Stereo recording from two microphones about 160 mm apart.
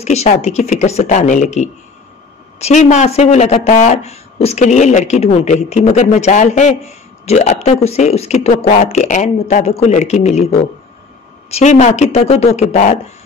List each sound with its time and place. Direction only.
0.0 s speech: 45° left (ahead or behind)